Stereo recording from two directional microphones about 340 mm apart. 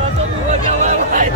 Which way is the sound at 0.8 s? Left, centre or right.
Right.